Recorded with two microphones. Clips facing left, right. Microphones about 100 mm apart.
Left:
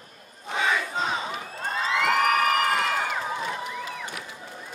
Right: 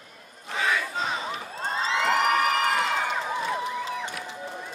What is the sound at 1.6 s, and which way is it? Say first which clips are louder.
Cheering: left 1 dB; 25° right (ahead or behind).